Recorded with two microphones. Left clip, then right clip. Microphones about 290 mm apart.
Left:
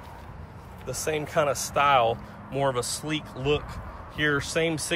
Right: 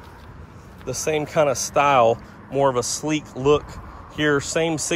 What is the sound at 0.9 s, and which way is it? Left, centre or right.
Speech, right.